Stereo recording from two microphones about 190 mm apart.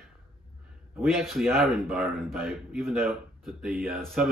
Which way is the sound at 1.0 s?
Centre (ahead or behind).